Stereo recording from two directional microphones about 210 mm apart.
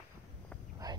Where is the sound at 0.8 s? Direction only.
20° right (ahead or behind).